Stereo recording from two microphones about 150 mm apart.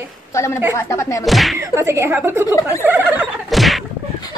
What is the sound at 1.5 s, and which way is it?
A woman's voice, 20° right (ahead or behind).